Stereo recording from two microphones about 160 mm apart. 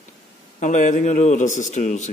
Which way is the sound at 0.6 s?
50° left (ahead or behind).